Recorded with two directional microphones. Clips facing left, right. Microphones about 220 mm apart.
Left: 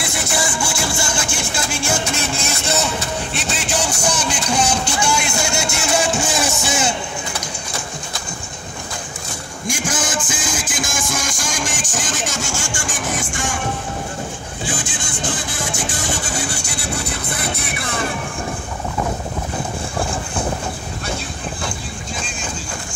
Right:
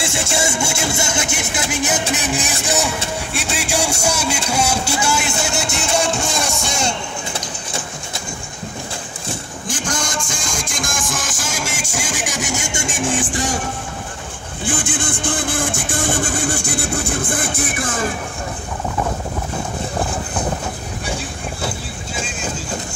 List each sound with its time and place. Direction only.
0.0 s music: 25° right (ahead or behind)
3.3 s a sound: 10° right (ahead or behind)
4.0 s music: 10° right (ahead or behind)
9.7 s music: 10° left (ahead or behind); by 13.6 s 35° right (ahead or behind)
14.7 s vehicle: 55° right (ahead or behind)